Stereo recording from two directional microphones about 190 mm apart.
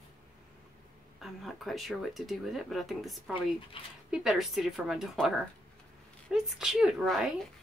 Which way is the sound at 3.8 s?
30° left (ahead or behind).